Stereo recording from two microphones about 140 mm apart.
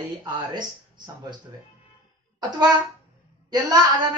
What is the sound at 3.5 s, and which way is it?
Speech, 30° right (ahead or behind).